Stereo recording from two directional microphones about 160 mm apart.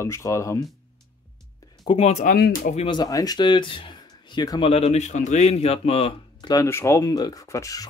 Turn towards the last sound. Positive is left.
turn(degrees=20)  # may be behind; listen again after turning